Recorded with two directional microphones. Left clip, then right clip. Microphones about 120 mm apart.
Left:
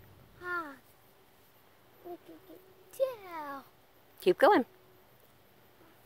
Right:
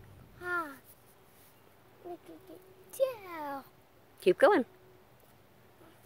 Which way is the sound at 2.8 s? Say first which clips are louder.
Right 1 dB; 10° left (ahead or behind).